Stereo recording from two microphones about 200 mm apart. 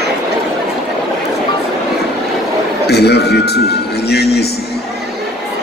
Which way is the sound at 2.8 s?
55° left (ahead or behind).